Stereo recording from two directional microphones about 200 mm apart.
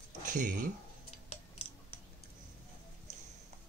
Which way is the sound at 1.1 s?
30° left (ahead or behind).